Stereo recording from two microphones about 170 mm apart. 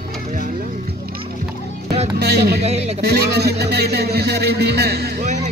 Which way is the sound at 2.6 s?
40° right (ahead or behind).